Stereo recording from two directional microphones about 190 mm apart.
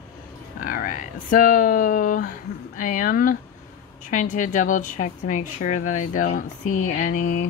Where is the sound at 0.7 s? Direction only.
45° left (ahead or behind).